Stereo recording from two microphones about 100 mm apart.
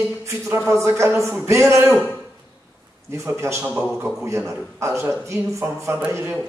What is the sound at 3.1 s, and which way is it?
A man's voice, 30° right (ahead or behind).